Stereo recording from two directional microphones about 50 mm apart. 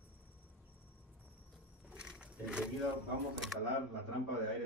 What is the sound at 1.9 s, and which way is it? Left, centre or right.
Roaring cats, right.